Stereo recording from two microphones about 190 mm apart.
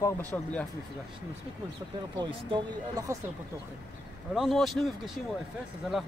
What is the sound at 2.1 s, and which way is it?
Speech, 20° right (ahead or behind).